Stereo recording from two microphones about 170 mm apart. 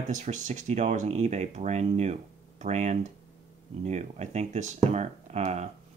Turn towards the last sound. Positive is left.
turn(degrees=-40)  # may be behind; listen again after turning